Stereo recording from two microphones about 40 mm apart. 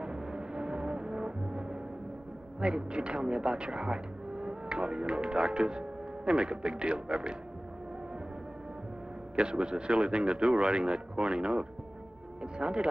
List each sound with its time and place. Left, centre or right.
0.0 s music: right
2.6 s speech: right
9.3 s speech: right